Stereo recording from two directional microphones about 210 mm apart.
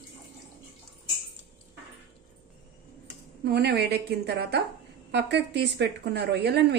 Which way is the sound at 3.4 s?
50° right (ahead or behind).